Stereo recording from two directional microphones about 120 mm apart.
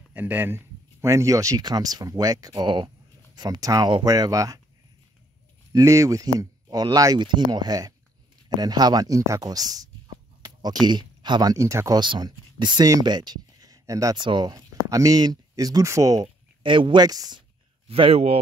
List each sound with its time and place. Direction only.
0.1 s speech: 15° right (ahead or behind); by 4.6 s 30° right (ahead or behind)
5.7 s speech: 30° right (ahead or behind)
10.4 s a sound: 35° right (ahead or behind)
11.5 s speech: 25° right (ahead or behind)
12.0 s speech: 35° right (ahead or behind)
16.6 s speech: 45° right (ahead or behind)
17.8 s speech: 50° right (ahead or behind)